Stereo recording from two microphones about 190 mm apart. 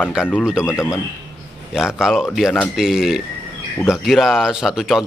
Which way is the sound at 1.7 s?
5° right (ahead or behind).